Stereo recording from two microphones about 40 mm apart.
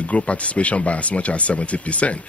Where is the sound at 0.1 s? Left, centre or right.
Left.